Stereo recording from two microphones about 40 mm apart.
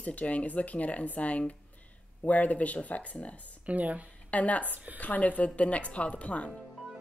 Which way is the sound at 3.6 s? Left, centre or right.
Right.